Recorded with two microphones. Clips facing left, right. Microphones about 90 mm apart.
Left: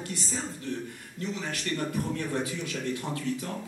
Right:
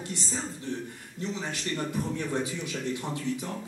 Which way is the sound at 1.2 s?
20° right (ahead or behind).